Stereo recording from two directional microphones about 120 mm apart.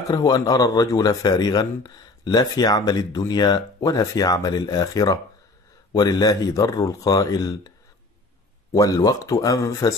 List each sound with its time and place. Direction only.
0.1 s speech: 35° left (ahead or behind)
8.7 s speech: 30° left (ahead or behind)